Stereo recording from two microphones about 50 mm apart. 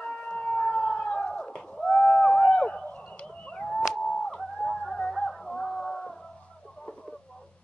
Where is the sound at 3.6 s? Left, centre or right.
Centre.